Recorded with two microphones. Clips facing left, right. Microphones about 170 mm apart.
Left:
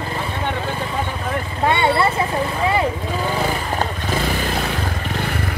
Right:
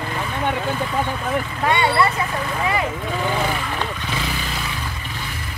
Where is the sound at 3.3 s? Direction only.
40° left (ahead or behind).